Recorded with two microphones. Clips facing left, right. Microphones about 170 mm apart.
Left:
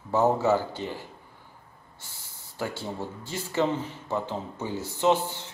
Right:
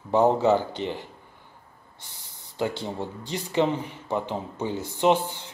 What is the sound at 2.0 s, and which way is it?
Speech, 20° right (ahead or behind).